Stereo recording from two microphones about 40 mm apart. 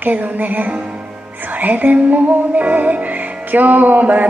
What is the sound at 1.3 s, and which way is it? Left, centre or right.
Music, right.